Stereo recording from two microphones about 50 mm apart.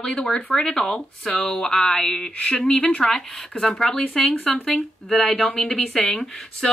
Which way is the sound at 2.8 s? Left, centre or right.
Left.